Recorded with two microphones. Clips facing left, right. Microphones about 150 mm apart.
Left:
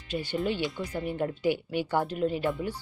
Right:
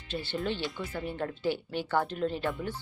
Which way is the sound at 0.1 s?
10° left (ahead or behind).